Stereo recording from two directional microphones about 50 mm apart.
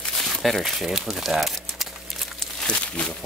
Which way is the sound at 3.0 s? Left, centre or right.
Left.